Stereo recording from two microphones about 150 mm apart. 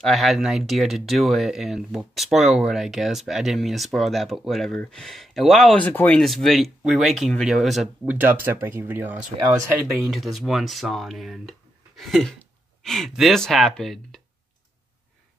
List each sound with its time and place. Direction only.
0.0 s speech: centre (ahead or behind)
8.1 s speech: 15° right (ahead or behind)
10.0 s speech: centre (ahead or behind)